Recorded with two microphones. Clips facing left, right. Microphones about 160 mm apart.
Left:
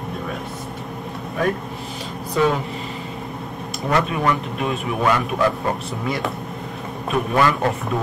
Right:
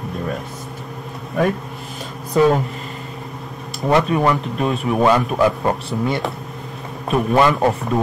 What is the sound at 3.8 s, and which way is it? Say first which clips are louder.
Speech: right 4 dB; 30° right (ahead or behind).